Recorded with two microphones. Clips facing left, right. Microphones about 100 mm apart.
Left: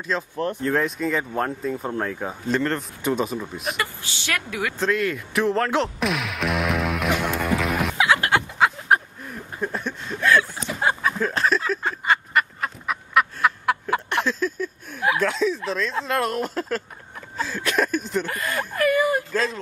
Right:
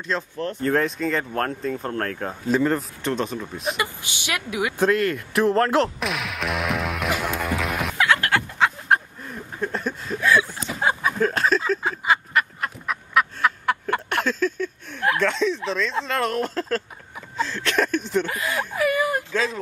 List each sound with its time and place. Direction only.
0.1 s speech: centre (ahead or behind)
2.4 s speech: 5° right (ahead or behind)
3.0 s speech: 5° left (ahead or behind)
3.7 s speech: 15° right (ahead or behind)
4.9 s music: centre (ahead or behind)
8.2 s a sound: 20° left (ahead or behind)
8.5 s a sound: 5° left (ahead or behind)
11.4 s speech: centre (ahead or behind)
11.8 s frog: centre (ahead or behind)
17.4 s speech: 10° left (ahead or behind)